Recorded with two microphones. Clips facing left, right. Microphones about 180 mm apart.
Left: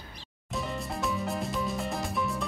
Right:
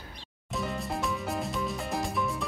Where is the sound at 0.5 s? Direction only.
Centre (ahead or behind).